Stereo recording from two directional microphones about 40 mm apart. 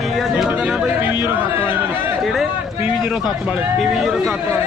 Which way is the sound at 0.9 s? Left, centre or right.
Right.